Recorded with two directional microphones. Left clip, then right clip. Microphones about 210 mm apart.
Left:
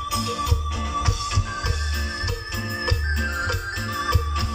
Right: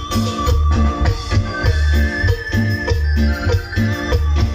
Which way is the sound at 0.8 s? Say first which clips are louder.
Right 1 dB; 30° right (ahead or behind).